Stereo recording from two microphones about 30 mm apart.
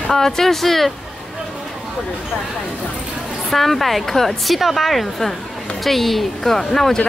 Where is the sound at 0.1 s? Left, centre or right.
Centre.